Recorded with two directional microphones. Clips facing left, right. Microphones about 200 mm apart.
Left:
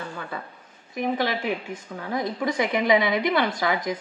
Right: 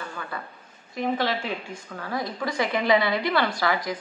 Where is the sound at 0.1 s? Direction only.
20° left (ahead or behind).